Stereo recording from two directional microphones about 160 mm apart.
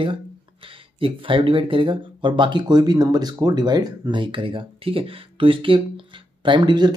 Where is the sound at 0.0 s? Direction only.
35° right (ahead or behind).